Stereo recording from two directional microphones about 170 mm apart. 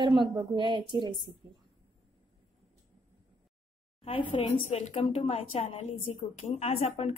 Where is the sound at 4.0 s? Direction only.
30° left (ahead or behind).